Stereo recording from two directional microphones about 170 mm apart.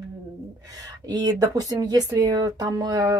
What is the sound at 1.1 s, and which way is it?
A woman's voice, 20° right (ahead or behind).